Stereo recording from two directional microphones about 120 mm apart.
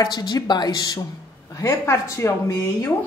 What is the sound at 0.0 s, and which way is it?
A woman's voice, 35° left (ahead or behind).